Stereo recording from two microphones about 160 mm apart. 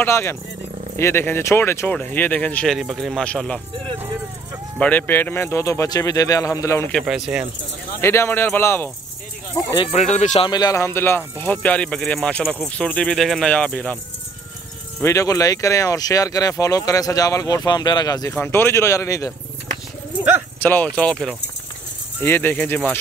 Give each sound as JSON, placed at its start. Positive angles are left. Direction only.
{"t": 0.0, "sound": "speech", "side_deg": 15}
{"t": 4.7, "sound": "speech", "side_deg": 10}
{"t": 6.9, "sound": "speech", "side_deg": 0}
{"t": 8.0, "sound": "speech", "side_deg": 15}
{"t": 9.9, "sound": "speech", "side_deg": 45}
{"t": 10.5, "sound": "speech", "side_deg": 20}
{"t": 15.0, "sound": "speech", "side_deg": 20}
{"t": 18.3, "sound": "speech", "side_deg": 10}
{"t": 20.6, "sound": "speech", "side_deg": 10}